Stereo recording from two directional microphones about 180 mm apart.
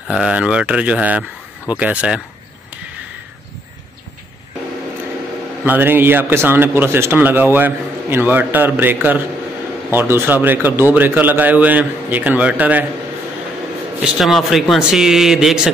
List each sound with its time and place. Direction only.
0.1 s a man's voice: 5° right (ahead or behind)
5.7 s a man's voice: 10° right (ahead or behind)
14.0 s a man's voice: centre (ahead or behind)